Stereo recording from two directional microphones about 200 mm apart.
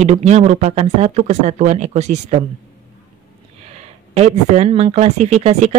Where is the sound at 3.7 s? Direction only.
30° right (ahead or behind).